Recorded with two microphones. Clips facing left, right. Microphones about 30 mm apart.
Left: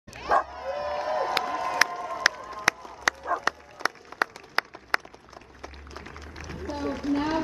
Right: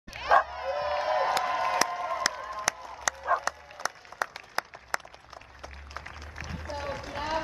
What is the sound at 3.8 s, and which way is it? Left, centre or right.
Applause, left.